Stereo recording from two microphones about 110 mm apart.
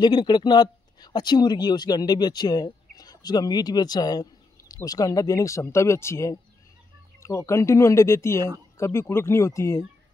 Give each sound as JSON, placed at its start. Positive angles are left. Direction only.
{"t": 0.0, "sound": "speech", "side_deg": 45}